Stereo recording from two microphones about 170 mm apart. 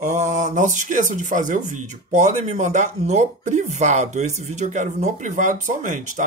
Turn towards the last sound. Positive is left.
turn(degrees=-45)  # may be behind; listen again after turning